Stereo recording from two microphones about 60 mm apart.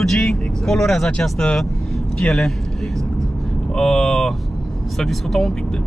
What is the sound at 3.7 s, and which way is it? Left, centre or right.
Speech, centre.